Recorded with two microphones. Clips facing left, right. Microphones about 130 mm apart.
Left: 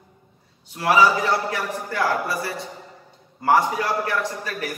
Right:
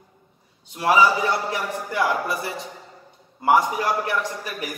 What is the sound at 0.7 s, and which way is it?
A man's voice, 15° right (ahead or behind).